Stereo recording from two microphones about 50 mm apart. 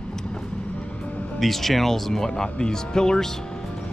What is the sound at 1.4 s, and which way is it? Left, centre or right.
Speech, centre.